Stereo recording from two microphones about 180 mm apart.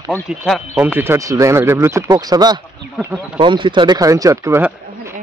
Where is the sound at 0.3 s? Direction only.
5° right (ahead or behind).